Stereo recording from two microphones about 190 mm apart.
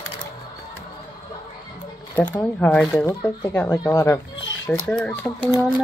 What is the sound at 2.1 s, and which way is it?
Speech, 10° left (ahead or behind).